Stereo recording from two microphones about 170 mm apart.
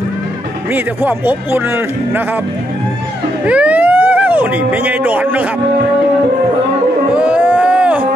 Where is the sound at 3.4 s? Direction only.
5° right (ahead or behind).